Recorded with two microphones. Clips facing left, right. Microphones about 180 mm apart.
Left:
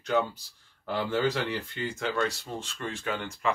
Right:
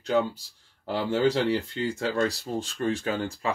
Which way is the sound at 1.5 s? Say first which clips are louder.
Right 6 dB; 30° right (ahead or behind).